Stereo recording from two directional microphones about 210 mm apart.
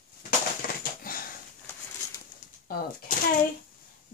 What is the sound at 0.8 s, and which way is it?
Wheeze, 45° left (ahead or behind).